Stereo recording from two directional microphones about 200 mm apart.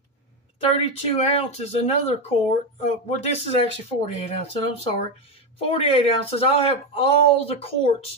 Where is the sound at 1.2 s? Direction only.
30° left (ahead or behind).